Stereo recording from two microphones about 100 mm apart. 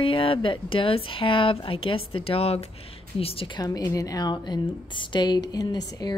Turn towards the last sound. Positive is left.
turn(degrees=45)  # may be behind; listen again after turning